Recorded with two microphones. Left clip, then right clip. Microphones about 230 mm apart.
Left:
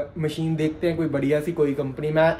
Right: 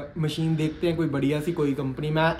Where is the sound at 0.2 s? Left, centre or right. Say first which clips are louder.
Left 1 dB; centre.